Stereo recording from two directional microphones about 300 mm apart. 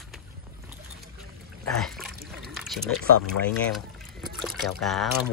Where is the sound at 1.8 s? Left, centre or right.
Centre.